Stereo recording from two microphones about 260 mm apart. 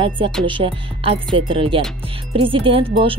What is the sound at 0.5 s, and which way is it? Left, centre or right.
Speech, centre.